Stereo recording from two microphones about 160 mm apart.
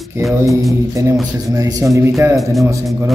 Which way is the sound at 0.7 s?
20° right (ahead or behind).